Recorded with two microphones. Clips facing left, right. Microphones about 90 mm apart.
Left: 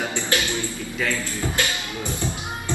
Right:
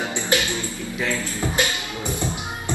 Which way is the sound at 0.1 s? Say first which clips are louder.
Right 1 dB; 20° right (ahead or behind).